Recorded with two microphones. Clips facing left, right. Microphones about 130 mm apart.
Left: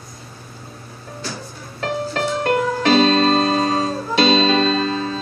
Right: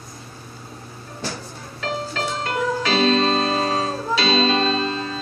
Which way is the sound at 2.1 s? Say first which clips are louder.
Left 6 dB; 50° left (ahead or behind).